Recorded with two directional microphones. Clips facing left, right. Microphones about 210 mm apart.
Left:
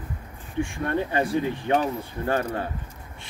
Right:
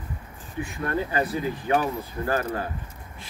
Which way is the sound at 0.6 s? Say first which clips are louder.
Left 1 dB; 30° left (ahead or behind).